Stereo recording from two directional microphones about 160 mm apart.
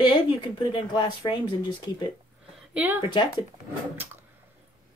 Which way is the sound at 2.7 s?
10° right (ahead or behind).